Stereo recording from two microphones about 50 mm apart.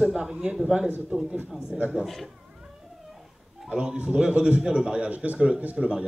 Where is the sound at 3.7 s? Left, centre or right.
Centre.